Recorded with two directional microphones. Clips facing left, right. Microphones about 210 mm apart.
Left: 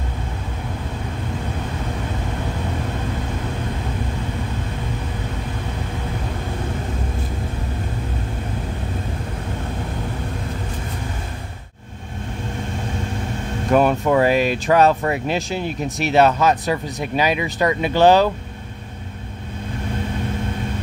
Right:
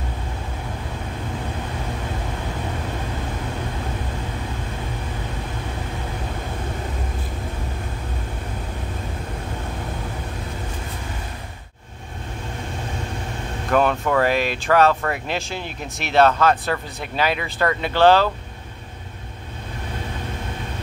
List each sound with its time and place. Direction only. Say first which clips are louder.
13.7 s air conditioning: left 3 dB; 10° left (ahead or behind)
14.0 s speech: left 4 dB; 15° left (ahead or behind)
15.2 s speech: left 5 dB; 40° left (ahead or behind)
16.1 s speech: left 1 dB; 10° left (ahead or behind)